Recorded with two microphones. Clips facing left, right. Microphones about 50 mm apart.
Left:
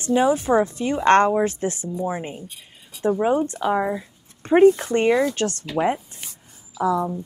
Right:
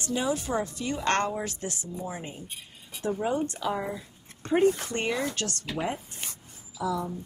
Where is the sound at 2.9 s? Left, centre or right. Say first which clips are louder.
Left 9 dB; right.